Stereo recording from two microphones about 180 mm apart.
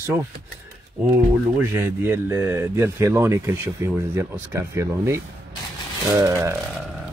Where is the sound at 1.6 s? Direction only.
15° right (ahead or behind).